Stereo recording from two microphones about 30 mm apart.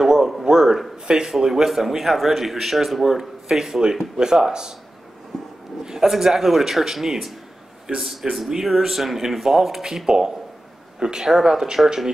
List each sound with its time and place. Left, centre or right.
0.0 s a sound: centre
1.0 s speech: right
1.4 s a man's voice: centre
3.8 s speech: right
5.3 s a sound: centre
5.9 s a man's voice: centre
11.2 s speech: centre